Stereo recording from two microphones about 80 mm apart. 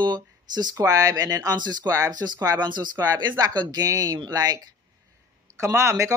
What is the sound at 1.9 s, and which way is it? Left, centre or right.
Speech, right.